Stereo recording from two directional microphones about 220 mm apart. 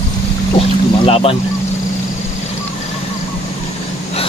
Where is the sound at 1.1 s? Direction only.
25° left (ahead or behind).